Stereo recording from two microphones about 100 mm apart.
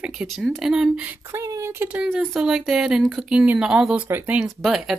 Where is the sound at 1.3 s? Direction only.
30° right (ahead or behind).